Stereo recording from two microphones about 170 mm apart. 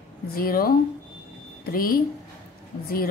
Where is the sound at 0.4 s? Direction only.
60° left (ahead or behind).